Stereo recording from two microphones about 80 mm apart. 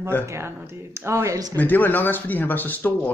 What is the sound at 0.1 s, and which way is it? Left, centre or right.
Speech, left.